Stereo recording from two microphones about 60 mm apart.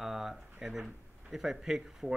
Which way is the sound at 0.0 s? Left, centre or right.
Centre.